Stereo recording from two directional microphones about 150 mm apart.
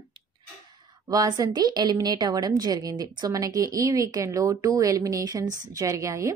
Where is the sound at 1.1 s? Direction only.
25° right (ahead or behind).